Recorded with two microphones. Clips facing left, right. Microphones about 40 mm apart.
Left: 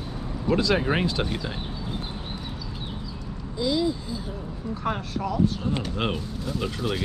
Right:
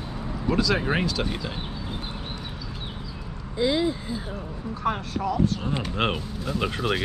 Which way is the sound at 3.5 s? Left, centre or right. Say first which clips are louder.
Right 1 dB; right.